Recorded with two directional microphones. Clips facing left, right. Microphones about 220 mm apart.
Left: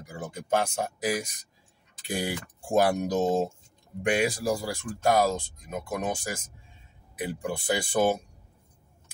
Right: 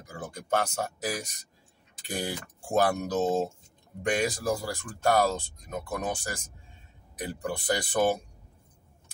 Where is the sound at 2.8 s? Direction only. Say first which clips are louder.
Left 2 dB; 15° left (ahead or behind).